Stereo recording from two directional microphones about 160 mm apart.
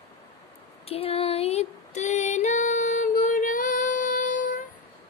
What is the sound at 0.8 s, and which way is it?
Female singing, 40° left (ahead or behind).